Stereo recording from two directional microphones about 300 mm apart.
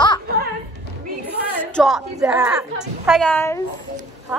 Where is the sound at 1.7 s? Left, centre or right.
Centre.